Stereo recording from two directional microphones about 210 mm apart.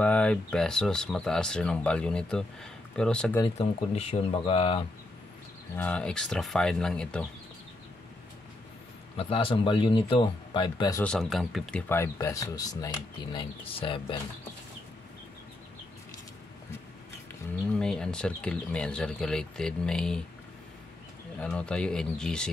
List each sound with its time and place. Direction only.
0.0 s speech: 5° left (ahead or behind)
3.3 s speech: 25° left (ahead or behind)
5.8 s speech: 5° left (ahead or behind)
9.1 s speech: 25° left (ahead or behind)
11.1 s speech: centre (ahead or behind)
11.9 s speech: 15° left (ahead or behind)
17.7 s speech: 5° left (ahead or behind)
21.4 s speech: 5° left (ahead or behind)